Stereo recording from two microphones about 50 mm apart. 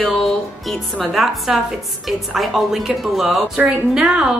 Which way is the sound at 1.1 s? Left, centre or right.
Centre.